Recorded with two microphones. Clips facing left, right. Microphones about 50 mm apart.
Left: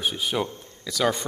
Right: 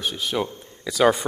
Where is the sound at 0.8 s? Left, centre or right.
Centre.